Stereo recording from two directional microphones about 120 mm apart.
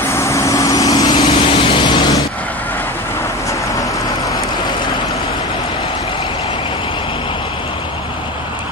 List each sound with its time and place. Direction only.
0.1 s vehicle: 25° left (ahead or behind)